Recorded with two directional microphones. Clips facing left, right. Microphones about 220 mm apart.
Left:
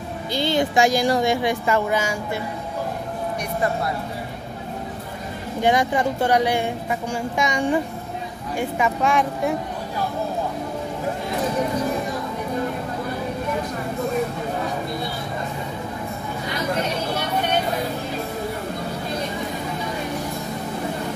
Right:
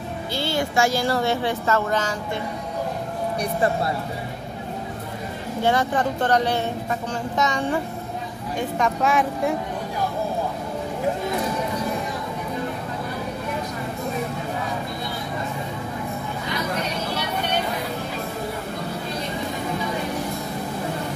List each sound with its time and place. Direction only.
0.3 s a woman's voice: 20° left (ahead or behind)
5.6 s a woman's voice: 15° left (ahead or behind)